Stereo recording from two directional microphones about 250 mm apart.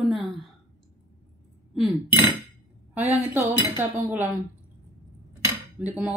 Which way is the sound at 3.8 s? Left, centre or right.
Centre.